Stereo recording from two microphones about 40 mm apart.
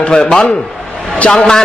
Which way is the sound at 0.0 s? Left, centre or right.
Left.